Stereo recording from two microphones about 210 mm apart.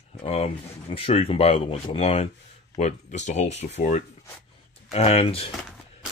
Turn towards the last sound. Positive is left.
turn(degrees=25)  # may be behind; listen again after turning